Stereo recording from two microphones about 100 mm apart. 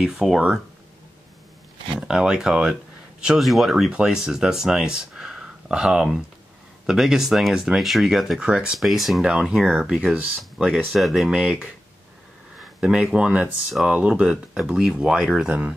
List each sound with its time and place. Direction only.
0.0 s speech: 5° right (ahead or behind)
2.0 s speech: 5° right (ahead or behind)
12.5 s speech: 10° right (ahead or behind)